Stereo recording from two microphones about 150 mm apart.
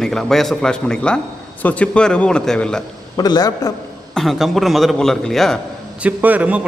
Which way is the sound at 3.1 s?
25° left (ahead or behind).